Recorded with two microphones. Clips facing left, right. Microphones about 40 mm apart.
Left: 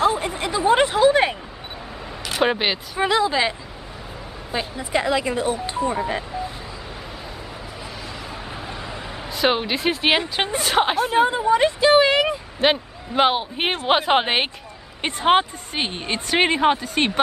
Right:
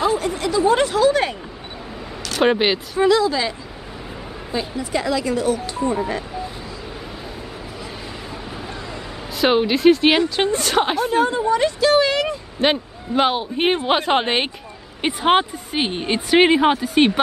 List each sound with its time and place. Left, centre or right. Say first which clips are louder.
0.0 s a sound: right 1 dB; left
2.4 s speech: right 4 dB; centre
3.0 s speech: right 2 dB; left
9.3 s speech: right 4 dB; centre
11.1 s speech: left 1 dB; centre
12.5 s a man's voice: right 1 dB; centre
15.0 s speech: right 1 dB; centre